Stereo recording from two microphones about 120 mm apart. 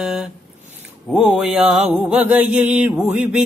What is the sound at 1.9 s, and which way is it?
Mantra, 15° right (ahead or behind).